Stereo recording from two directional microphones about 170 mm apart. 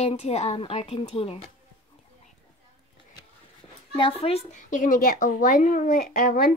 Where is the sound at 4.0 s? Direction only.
35° left (ahead or behind).